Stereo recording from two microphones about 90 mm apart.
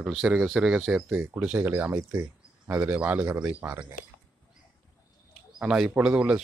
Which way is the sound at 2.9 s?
20° right (ahead or behind).